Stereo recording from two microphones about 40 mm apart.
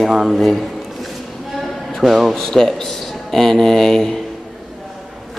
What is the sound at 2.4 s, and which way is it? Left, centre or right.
A man's voice, centre.